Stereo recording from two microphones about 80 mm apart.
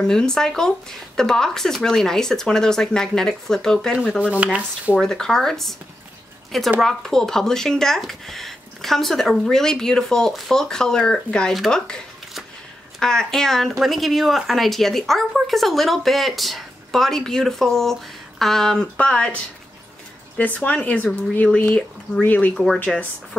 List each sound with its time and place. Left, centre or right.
0.0 s speech: centre
4.2 s speech: centre
5.0 s speech: centre
6.8 s speech: centre
13.0 s speech: centre
20.3 s speech: centre
22.5 s speech: centre